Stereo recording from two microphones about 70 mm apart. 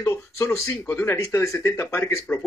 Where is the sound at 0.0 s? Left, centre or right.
Left.